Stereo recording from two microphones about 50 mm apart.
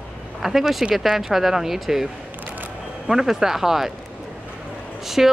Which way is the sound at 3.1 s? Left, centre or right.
Centre.